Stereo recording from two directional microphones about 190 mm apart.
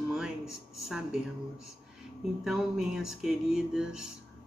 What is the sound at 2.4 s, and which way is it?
Speech, centre (ahead or behind).